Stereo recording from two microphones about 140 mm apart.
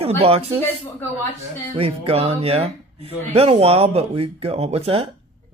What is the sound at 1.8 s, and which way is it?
Speech, 45° right (ahead or behind).